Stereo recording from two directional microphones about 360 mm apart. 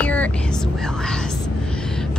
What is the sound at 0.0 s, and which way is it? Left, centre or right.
Whispering, centre.